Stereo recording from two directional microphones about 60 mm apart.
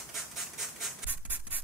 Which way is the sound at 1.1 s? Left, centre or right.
Right.